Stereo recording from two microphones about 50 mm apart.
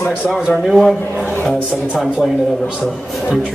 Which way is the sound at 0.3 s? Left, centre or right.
Centre.